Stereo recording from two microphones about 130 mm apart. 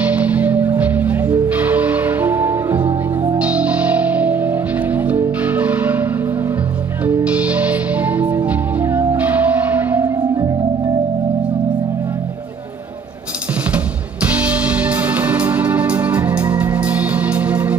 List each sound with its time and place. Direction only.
0.0 s music: 10° right (ahead or behind)
10.0 s music: 30° right (ahead or behind)
13.7 s music: 10° right (ahead or behind)